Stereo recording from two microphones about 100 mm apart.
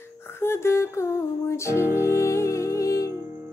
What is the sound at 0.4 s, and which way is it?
Music, 25° left (ahead or behind).